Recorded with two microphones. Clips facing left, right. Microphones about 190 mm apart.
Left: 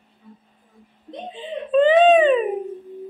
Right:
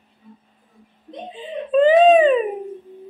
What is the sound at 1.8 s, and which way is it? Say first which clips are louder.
Speech: right 2 dB; 40° right (ahead or behind).